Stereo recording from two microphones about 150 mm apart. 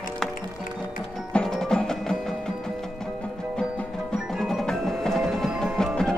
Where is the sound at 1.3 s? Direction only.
5° left (ahead or behind).